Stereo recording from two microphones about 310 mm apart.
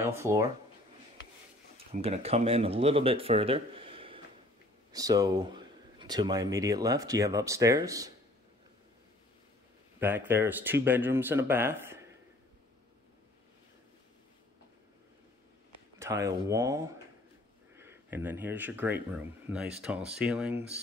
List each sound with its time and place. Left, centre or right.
0.0 s speech: centre
1.9 s speech: centre
9.9 s speech: centre
16.0 s speech: centre